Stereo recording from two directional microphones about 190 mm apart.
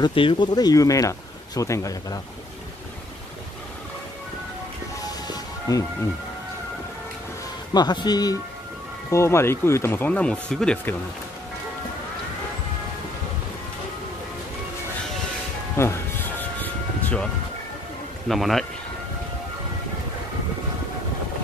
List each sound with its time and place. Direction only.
0.0 s speech: 25° left (ahead or behind)
5.3 s music: 20° left (ahead or behind)
7.7 s speech: 20° left (ahead or behind); by 11.0 s 5° left (ahead or behind)
15.8 s music: 10° left (ahead or behind)
18.3 s a man's voice: centre (ahead or behind)